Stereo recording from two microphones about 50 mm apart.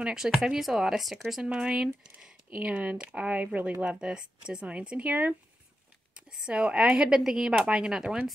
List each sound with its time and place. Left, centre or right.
0.0 s a woman's voice: centre
1.4 s a woman's voice: centre
2.5 s speech: right
3.8 s speech: centre
6.3 s a woman's voice: centre